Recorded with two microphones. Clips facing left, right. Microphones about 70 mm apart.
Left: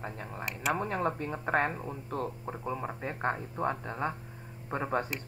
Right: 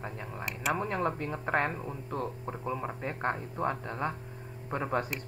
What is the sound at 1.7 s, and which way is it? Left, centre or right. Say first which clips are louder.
Speech: even; centre.